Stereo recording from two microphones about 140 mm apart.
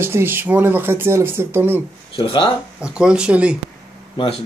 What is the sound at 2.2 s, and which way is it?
Speech, 40° left (ahead or behind).